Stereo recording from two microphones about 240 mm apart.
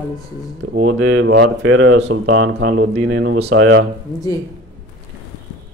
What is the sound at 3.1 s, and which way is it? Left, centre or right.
Speech, right.